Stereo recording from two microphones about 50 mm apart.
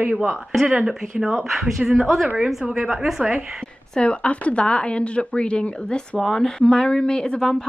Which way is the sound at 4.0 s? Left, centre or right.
Left.